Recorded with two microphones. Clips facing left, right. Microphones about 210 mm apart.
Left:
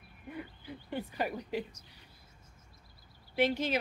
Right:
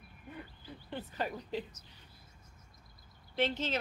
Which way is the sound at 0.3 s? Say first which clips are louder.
Left 5 dB; 10° left (ahead or behind).